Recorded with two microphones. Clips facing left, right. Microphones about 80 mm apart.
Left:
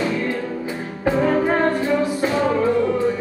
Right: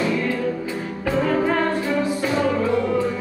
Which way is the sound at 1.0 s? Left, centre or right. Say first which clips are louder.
Left 2 dB; left.